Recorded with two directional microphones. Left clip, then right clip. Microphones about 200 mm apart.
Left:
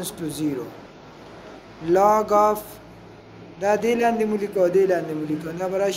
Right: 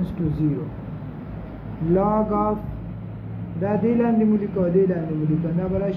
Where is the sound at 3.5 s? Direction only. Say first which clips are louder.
Left 2 dB; 65° left (ahead or behind).